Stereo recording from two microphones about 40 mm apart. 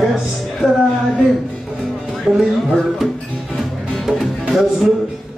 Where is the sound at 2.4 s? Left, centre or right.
Centre.